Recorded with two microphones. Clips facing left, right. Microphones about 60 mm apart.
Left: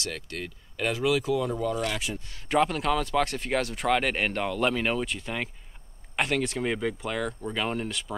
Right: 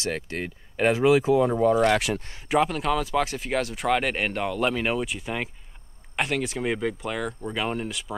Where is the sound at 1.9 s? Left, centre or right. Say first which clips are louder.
Right 9 dB; right.